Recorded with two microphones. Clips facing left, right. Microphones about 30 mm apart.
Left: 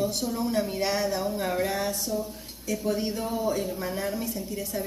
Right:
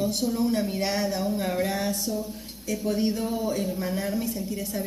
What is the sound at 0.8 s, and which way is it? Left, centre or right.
Speech, right.